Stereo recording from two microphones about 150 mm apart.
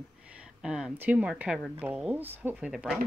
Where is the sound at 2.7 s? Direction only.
Centre (ahead or behind).